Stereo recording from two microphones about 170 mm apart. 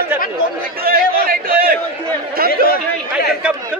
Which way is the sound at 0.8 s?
60° right (ahead or behind).